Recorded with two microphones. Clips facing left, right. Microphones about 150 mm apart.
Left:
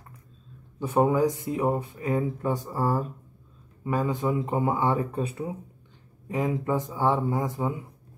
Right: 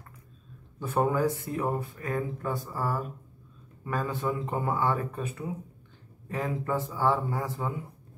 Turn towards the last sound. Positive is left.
turn(degrees=20)  # may be behind; listen again after turning